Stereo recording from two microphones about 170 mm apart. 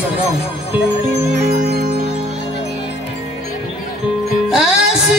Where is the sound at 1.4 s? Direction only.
65° right (ahead or behind).